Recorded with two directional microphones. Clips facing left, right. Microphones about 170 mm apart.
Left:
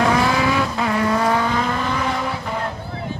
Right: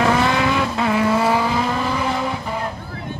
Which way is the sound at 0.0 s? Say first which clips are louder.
Even; centre (ahead or behind).